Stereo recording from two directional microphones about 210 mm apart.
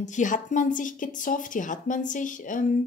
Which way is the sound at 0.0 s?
35° left (ahead or behind).